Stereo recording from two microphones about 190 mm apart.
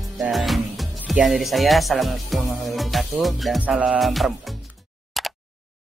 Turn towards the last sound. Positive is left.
turn(degrees=0)  # may be behind; listen again after turning